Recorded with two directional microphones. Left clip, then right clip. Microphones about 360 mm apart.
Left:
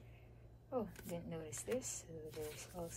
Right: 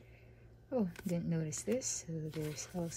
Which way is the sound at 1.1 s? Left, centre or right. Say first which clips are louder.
Right 7 dB; right.